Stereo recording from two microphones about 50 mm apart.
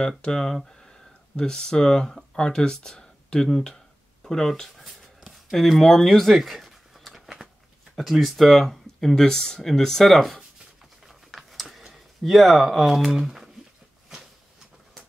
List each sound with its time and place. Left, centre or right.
0.2 s speech: centre
5.5 s a sound: centre
7.9 s speech: centre
11.1 s typing: centre
12.8 s speech: centre